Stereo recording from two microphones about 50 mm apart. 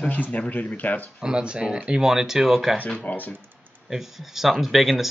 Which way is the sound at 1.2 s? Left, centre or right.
Centre.